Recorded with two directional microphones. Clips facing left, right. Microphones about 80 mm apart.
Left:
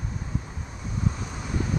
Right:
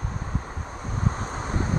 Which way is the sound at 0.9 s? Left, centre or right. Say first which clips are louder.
Right 2 dB; right.